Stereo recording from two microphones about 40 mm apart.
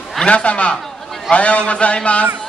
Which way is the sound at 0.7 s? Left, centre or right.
Centre.